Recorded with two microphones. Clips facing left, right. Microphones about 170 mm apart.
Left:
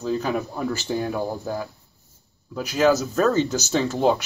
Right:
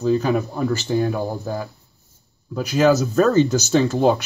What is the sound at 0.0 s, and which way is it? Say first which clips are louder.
Speech: right 5 dB; centre (ahead or behind).